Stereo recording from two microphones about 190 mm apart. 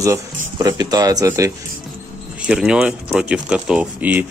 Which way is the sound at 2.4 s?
5° right (ahead or behind).